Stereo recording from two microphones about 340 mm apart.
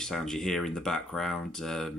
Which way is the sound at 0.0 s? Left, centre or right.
Centre.